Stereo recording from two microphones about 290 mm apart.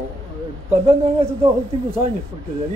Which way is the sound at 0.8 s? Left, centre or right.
Right.